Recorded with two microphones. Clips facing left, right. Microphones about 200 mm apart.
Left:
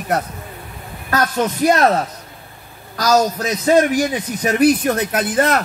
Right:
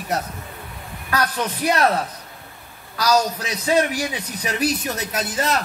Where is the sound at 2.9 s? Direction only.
40° left (ahead or behind).